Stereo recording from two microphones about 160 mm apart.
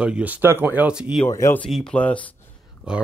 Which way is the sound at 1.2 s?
15° left (ahead or behind).